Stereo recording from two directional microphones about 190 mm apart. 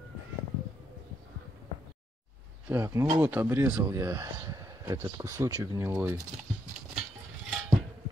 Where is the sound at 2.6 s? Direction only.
15° right (ahead or behind).